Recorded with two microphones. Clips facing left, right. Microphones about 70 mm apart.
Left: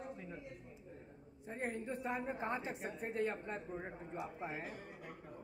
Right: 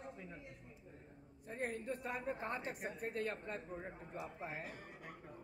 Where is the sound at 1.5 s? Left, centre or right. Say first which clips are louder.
Left 1 dB; centre.